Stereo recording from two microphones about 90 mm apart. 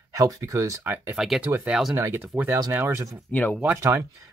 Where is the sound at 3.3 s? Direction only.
15° left (ahead or behind).